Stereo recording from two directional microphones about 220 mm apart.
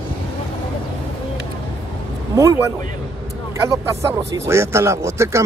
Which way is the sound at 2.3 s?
15° right (ahead or behind).